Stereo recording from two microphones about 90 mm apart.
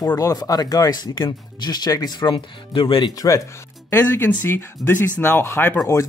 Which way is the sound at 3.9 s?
25° left (ahead or behind).